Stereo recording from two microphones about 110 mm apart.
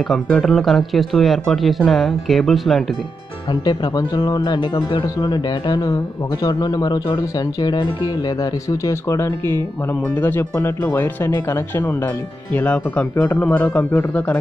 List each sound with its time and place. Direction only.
0.1 s speech: centre (ahead or behind)
3.6 s speech: 40° left (ahead or behind)
4.6 s speech: 50° left (ahead or behind)
5.2 s speech: 35° left (ahead or behind)
8.6 s speech: 30° left (ahead or behind)